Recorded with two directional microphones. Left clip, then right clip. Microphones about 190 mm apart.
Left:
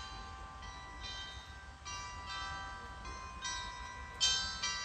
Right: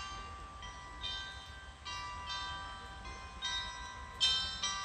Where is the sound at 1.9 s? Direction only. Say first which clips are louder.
Right 2 dB; 20° right (ahead or behind).